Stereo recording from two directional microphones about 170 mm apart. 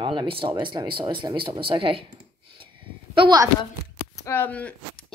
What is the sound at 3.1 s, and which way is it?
Speech, 30° right (ahead or behind).